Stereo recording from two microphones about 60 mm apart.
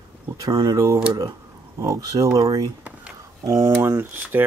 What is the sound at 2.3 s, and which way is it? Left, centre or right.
Speech, right.